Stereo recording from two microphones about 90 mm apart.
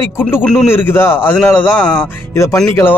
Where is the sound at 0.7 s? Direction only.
25° left (ahead or behind).